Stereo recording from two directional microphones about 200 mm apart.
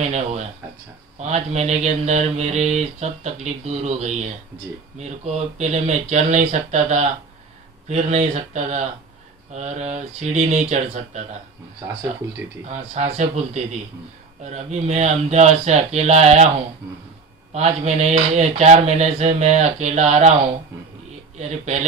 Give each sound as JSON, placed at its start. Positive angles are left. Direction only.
{"t": 0.0, "sound": "mantra", "side_deg": -35}
{"t": 12.6, "sound": "mantra", "side_deg": -35}
{"t": 21.4, "sound": "mantra", "side_deg": -35}